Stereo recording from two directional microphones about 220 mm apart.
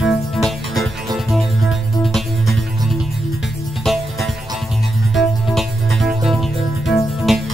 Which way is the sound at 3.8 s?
Centre (ahead or behind).